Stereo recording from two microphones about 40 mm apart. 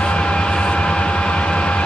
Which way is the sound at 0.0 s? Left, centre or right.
Left.